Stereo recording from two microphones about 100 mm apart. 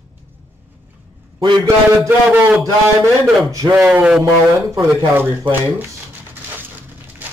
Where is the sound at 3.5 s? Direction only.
35° right (ahead or behind).